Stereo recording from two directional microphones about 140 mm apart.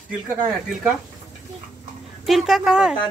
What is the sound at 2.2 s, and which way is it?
Speech, centre (ahead or behind).